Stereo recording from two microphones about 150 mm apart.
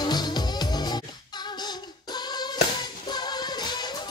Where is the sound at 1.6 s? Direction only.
30° left (ahead or behind).